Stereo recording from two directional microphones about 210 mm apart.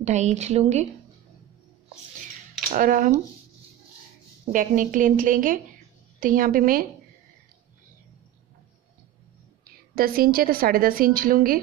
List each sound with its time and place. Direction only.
0.0 s a woman's voice: 35° right (ahead or behind)
2.7 s a woman's voice: 40° right (ahead or behind)
4.5 s a woman's voice: 40° right (ahead or behind)
9.9 s a woman's voice: 45° right (ahead or behind)